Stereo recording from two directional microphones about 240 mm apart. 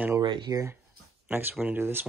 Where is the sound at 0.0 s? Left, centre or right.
Centre.